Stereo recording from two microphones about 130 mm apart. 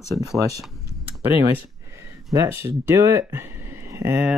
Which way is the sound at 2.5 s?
15° right (ahead or behind).